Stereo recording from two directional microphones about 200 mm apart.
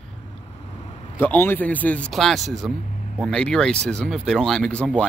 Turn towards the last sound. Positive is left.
turn(degrees=5)  # may be behind; listen again after turning